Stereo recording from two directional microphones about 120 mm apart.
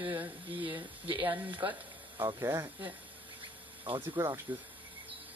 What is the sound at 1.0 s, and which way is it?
Speech, 45° right (ahead or behind).